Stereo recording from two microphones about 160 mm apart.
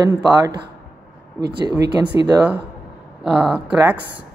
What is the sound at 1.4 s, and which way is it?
Speech, 90° right.